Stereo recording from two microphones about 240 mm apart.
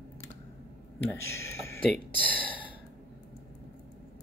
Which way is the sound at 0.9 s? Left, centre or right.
Centre.